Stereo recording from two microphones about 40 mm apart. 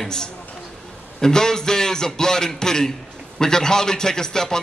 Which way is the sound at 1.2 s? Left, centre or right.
Centre.